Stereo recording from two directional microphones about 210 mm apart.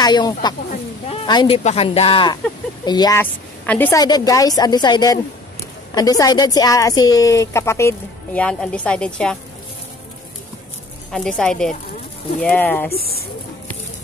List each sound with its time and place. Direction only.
0.0 s speech: 20° left (ahead or behind); by 9.4 s 5° left (ahead or behind)
11.1 s a woman's voice: centre (ahead or behind)
12.9 s speech: 45° left (ahead or behind)